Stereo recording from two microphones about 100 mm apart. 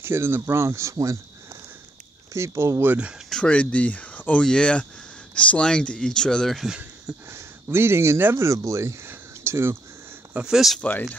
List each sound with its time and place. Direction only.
0.0 s speech: 25° right (ahead or behind)
3.3 s speech: 10° left (ahead or behind)
7.2 s speech: 25° right (ahead or behind)
10.3 s speech: 5° right (ahead or behind)
10.8 s speech: 15° left (ahead or behind)